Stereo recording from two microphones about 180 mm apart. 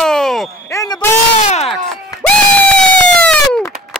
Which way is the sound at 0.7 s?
20° left (ahead or behind).